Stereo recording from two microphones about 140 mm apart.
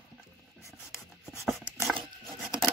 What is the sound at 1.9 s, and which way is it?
Rub, 10° right (ahead or behind).